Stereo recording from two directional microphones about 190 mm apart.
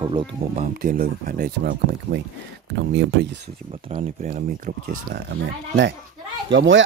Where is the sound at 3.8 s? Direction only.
30° right (ahead or behind).